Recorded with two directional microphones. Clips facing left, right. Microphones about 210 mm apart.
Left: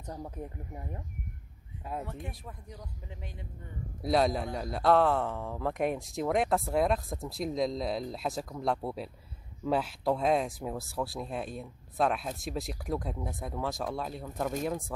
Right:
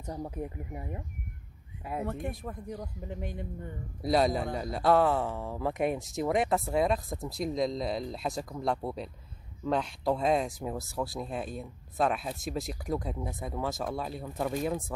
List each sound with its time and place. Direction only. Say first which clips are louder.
0.0 s speech: right 4 dB; 10° right (ahead or behind)
2.0 s speech: right 7 dB; 50° right (ahead or behind)
4.0 s speech: right 1 dB; centre (ahead or behind)